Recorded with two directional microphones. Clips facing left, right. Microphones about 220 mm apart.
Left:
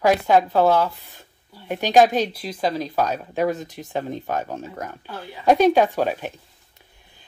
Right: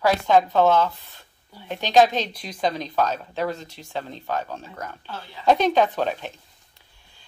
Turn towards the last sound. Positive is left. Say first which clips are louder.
# left 2 dB
turn(degrees=10)  # may be behind; listen again after turning